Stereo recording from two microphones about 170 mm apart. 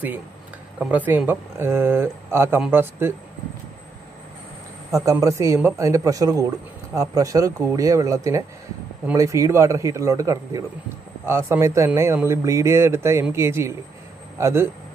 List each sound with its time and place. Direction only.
0.7 s a man's voice: 10° right (ahead or behind)
4.9 s a man's voice: 20° right (ahead or behind)